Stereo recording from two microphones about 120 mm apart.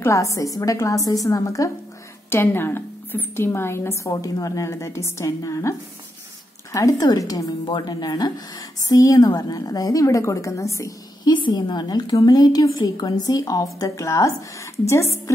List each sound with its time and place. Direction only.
0.0 s a woman's voice: 25° left (ahead or behind)
11.3 s a woman's voice: 40° left (ahead or behind)